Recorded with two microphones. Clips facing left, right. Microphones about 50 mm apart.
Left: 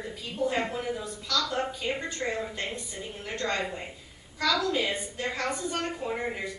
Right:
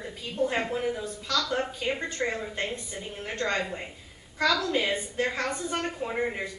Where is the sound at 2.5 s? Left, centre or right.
Centre.